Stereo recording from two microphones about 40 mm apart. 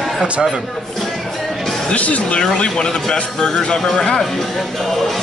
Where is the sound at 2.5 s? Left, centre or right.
Left.